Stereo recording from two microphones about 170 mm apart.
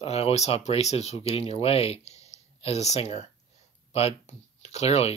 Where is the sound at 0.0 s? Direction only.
35° left (ahead or behind).